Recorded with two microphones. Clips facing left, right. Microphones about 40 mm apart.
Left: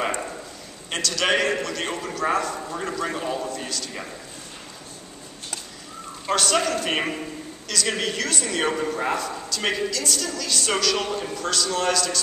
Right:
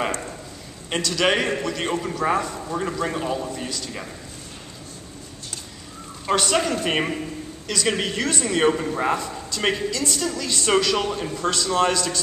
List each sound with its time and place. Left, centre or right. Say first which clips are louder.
0.9 s a man's voice: right 1 dB; centre
6.3 s a man's voice: right 1 dB; centre